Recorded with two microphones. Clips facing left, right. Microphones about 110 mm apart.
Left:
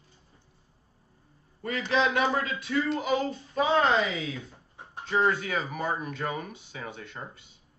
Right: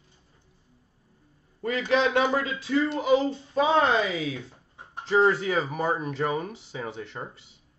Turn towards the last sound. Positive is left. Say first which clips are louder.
# right 4 dB
turn(degrees=-25)  # may be behind; listen again after turning